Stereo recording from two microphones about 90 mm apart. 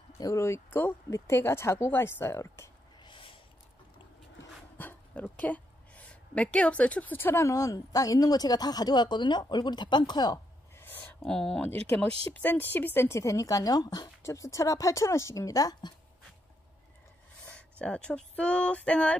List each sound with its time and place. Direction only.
0.2 s a woman's voice: 35° left (ahead or behind)
3.0 s a sound: 70° left (ahead or behind)
4.7 s dog: 20° left (ahead or behind)
5.3 s a woman's voice: 15° left (ahead or behind)
7.4 s speech: 40° left (ahead or behind)
10.8 s a sound: 20° left (ahead or behind)
11.2 s speech: 5° left (ahead or behind)
12.3 s speech: 20° left (ahead or behind); by 14.1 s 50° left (ahead or behind)
14.2 s speech: 35° left (ahead or behind)
17.5 s speech: 15° left (ahead or behind)